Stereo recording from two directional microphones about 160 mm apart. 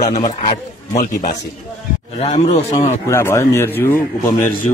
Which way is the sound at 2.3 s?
45° left (ahead or behind).